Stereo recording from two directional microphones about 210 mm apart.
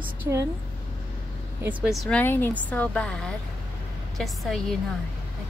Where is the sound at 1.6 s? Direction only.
Centre (ahead or behind).